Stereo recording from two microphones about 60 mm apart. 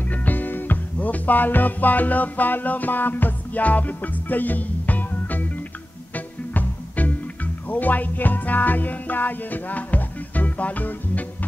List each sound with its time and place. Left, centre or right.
0.0 s music: left